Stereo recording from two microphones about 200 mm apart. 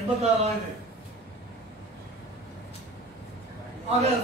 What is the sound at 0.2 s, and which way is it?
Speech, 30° right (ahead or behind).